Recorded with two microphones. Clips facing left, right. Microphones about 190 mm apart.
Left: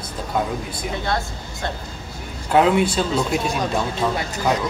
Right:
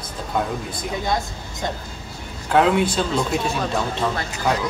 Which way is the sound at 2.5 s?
5° left (ahead or behind).